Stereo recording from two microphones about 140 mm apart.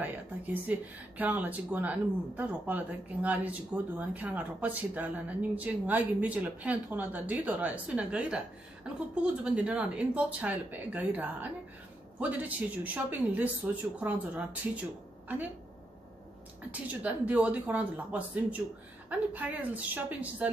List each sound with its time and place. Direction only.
0.0 s speech: 10° right (ahead or behind)
16.8 s speech: 10° right (ahead or behind)